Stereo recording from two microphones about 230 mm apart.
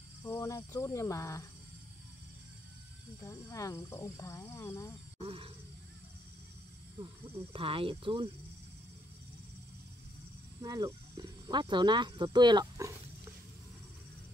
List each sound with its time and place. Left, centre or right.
0.2 s speech: centre
3.2 s speech: centre
5.2 s speech: right
7.5 s speech: right
10.6 s speech: centre